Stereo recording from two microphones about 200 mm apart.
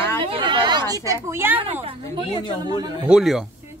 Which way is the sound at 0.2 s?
25° right (ahead or behind).